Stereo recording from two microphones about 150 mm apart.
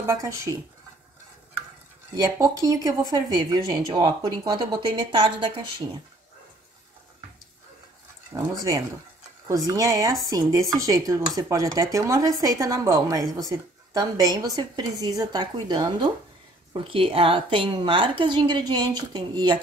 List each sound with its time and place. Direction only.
0.0 s a woman's voice: 20° right (ahead or behind)
2.1 s speech: 20° right (ahead or behind)
8.3 s a woman's voice: 20° right (ahead or behind)